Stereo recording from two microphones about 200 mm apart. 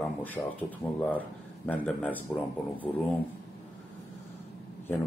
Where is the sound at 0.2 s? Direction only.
10° left (ahead or behind).